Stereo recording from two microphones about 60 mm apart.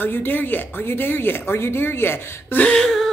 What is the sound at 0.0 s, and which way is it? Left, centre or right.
Speech, left.